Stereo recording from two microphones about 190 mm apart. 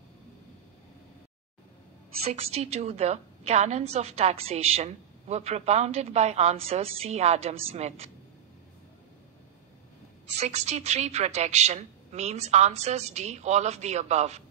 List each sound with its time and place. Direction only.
2.4 s a woman's voice: 35° right (ahead or behind)
10.4 s a woman's voice: 35° right (ahead or behind)